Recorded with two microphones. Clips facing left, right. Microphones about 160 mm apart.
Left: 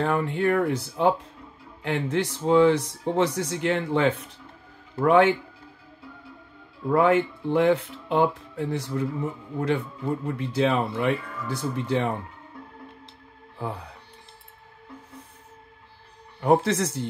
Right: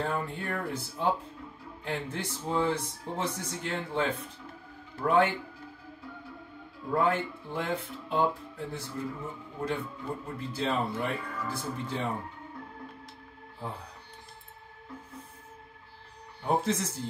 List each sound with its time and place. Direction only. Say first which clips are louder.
0.0 s speech: left 9 dB; 80° left
6.9 s speech: left 8 dB; 75° left (ahead or behind)
10.2 s speech: left 9 dB; 80° left
13.6 s speech: left 7 dB; 75° left (ahead or behind)
16.3 s speech: left 8 dB; 80° left